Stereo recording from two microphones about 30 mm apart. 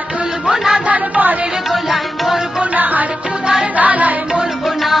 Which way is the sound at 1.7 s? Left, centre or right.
Centre.